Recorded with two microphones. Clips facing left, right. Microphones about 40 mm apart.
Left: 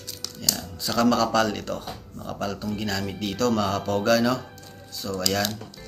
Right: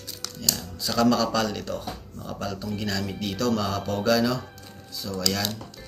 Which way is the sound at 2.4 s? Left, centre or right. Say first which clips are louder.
Left 3 dB; left.